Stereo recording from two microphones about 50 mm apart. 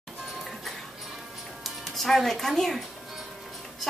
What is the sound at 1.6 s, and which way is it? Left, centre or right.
Speech, centre.